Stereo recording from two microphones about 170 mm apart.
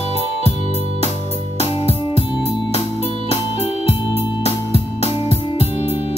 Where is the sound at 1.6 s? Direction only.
35° left (ahead or behind).